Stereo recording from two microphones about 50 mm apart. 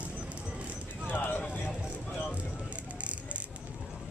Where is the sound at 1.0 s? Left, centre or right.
Left.